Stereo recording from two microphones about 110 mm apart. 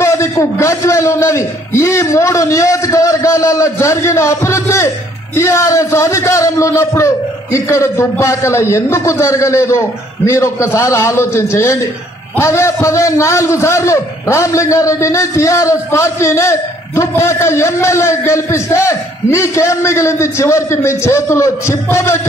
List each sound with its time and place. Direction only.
0.0 s a man's voice: 25° left (ahead or behind)